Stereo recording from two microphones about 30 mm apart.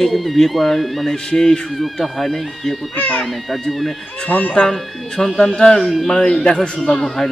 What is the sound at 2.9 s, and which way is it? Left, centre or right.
Speech, left.